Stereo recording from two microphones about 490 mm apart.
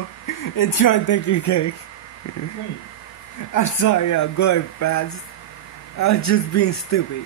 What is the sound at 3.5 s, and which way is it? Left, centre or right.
Speech, left.